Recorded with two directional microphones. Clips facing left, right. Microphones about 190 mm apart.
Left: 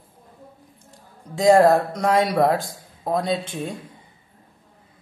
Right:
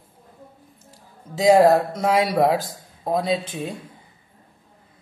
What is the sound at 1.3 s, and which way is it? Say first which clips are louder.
A man's voice: even; 5° right (ahead or behind).